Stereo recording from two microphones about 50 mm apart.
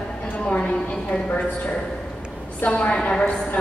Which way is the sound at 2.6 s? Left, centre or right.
Left.